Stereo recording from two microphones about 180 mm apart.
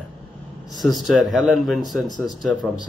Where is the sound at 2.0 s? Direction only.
25° left (ahead or behind).